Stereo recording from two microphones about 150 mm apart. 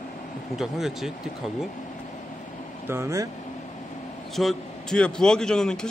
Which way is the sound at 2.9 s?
20° right (ahead or behind).